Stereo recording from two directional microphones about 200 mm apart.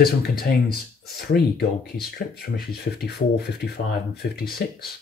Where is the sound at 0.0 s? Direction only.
50° left (ahead or behind).